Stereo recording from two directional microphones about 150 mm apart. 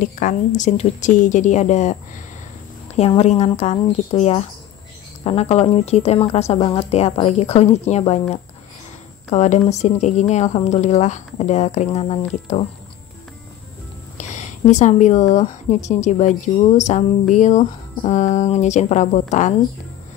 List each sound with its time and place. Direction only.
0.0 s speech: 60° left (ahead or behind)
3.2 s speech: 45° left (ahead or behind)
14.1 s a woman's voice: 50° left (ahead or behind)